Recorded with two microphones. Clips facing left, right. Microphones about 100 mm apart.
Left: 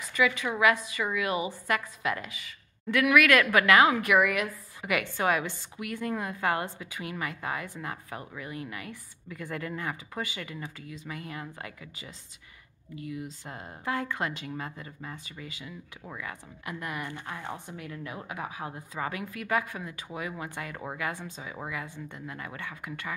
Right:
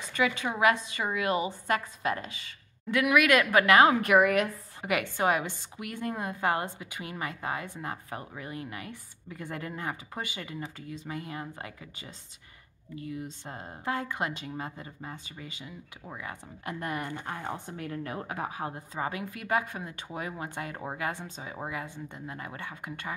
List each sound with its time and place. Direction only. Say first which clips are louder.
0.1 s a woman's voice: left 1 dB; 30° right (ahead or behind)